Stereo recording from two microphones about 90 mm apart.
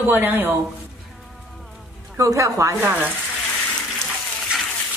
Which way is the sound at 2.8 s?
20° right (ahead or behind).